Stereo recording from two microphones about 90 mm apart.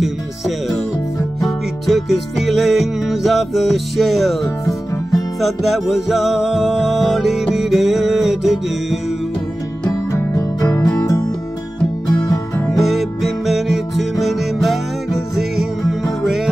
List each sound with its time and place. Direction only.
1.4 s music: centre (ahead or behind)
10.1 s music: 30° left (ahead or behind)
12.7 s music: centre (ahead or behind)